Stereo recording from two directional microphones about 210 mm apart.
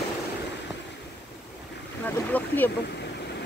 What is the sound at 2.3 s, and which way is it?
Vehicle, 10° left (ahead or behind).